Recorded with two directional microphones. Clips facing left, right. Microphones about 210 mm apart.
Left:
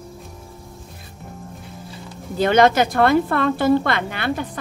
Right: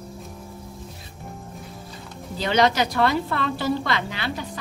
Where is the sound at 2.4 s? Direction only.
50° left (ahead or behind).